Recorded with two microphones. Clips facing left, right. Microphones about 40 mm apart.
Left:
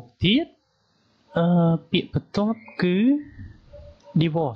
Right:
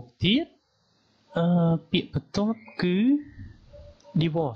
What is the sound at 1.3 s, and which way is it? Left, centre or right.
Speech, centre.